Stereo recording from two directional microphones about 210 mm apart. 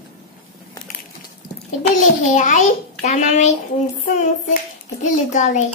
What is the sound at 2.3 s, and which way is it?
Hands, 35° left (ahead or behind).